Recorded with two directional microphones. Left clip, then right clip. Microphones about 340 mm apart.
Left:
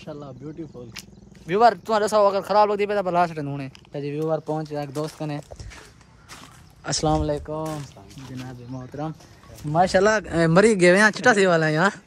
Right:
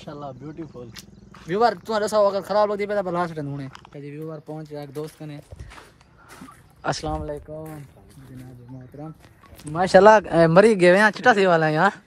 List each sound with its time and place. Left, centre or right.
1.5 s speech: centre
7.1 s speech: left
9.8 s speech: centre